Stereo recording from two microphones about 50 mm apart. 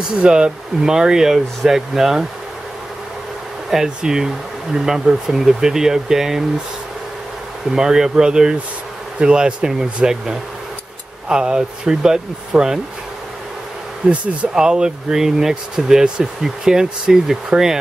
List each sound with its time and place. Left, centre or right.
0.2 s speech: centre
3.7 s speech: centre
7.7 s speech: centre
14.0 s speech: right